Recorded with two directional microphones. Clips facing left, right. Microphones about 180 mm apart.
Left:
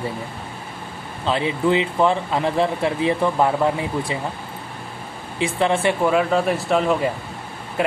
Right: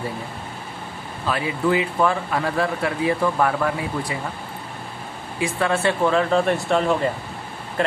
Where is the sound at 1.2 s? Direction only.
25° left (ahead or behind).